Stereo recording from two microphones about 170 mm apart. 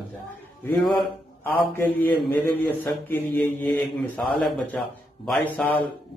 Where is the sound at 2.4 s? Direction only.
10° left (ahead or behind).